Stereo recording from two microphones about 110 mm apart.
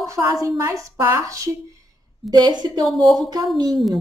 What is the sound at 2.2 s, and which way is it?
Speech, 40° right (ahead or behind).